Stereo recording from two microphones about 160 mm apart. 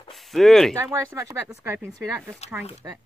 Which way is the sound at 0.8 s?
20° right (ahead or behind).